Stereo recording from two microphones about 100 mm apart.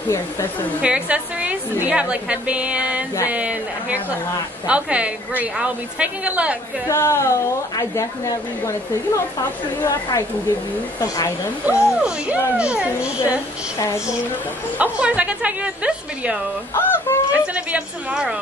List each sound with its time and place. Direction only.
0.8 s a woman's voice: 10° right (ahead or behind)
6.9 s speech: 30° left (ahead or behind)
9.8 s speech: 45° left (ahead or behind)
12.0 s a woman's voice: 10° right (ahead or behind)
13.7 s speech: 30° left (ahead or behind)
14.8 s a woman's voice: 15° right (ahead or behind)
16.7 s speech: 20° left (ahead or behind)
17.3 s a woman's voice: 15° right (ahead or behind)